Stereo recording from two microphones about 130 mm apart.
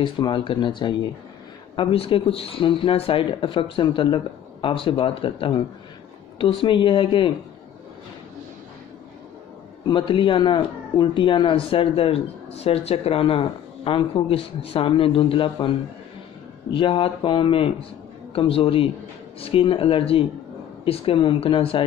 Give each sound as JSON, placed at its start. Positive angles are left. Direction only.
{"t": 0.0, "sound": "speech", "side_deg": 40}
{"t": 9.9, "sound": "speech", "side_deg": 40}
{"t": 16.7, "sound": "speech", "side_deg": 40}